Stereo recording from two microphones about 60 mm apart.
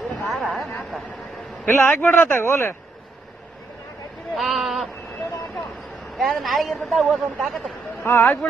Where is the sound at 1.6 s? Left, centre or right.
Left.